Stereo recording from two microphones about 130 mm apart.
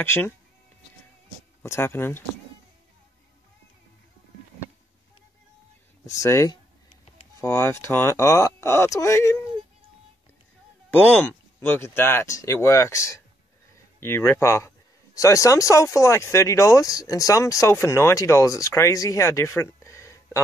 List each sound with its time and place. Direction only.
0.0 s speech: 20° left (ahead or behind)
1.6 s speech: 20° left (ahead or behind)
6.0 s speech: 25° left (ahead or behind)
10.9 s speech: 15° left (ahead or behind)